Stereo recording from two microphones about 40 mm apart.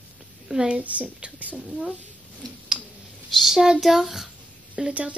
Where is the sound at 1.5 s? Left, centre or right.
Centre.